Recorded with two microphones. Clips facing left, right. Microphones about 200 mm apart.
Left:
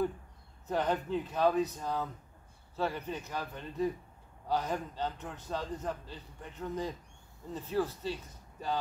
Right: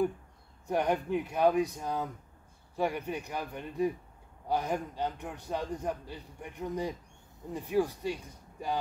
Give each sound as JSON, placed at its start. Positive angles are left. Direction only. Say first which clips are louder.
{"t": 0.7, "sound": "a man's voice", "louder": "right 2 dB", "side_deg": -15}